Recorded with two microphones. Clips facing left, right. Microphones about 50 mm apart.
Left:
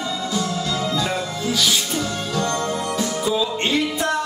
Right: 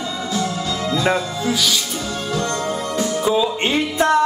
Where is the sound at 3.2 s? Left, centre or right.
Right.